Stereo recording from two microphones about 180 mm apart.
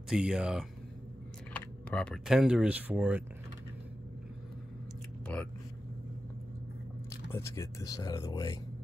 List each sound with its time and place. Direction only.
0.1 s speech: 5° right (ahead or behind)
5.2 s speech: 10° left (ahead or behind)
7.2 s speech: 15° left (ahead or behind)